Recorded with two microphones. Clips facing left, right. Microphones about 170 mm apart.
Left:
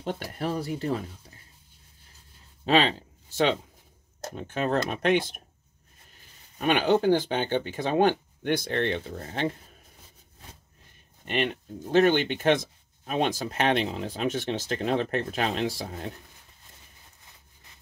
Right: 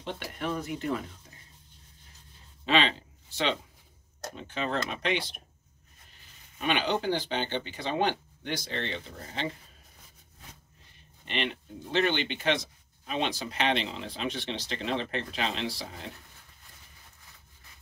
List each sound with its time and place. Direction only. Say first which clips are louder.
0.0 s speech: left 4 dB; 45° left (ahead or behind)
2.6 s speech: left 4 dB; 40° left (ahead or behind)
6.6 s speech: left 6 dB; 45° left (ahead or behind)
11.2 s speech: left 5 dB; 45° left (ahead or behind)